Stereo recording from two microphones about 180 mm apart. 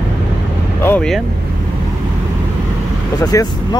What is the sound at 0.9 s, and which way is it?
Speech, 5° left (ahead or behind).